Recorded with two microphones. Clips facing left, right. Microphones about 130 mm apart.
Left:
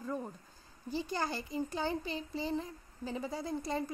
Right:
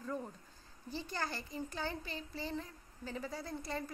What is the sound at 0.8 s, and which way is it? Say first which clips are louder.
A child's voice: left 5 dB; 15° left (ahead or behind).